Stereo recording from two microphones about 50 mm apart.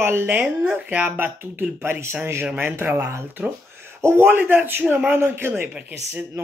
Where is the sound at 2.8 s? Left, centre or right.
Right.